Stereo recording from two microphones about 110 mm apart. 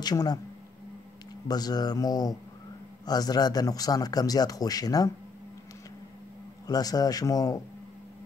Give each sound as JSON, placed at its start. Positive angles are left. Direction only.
{"t": 0.0, "sound": "a man's voice", "side_deg": 35}
{"t": 1.5, "sound": "a man's voice", "side_deg": 35}
{"t": 6.7, "sound": "a man's voice", "side_deg": 35}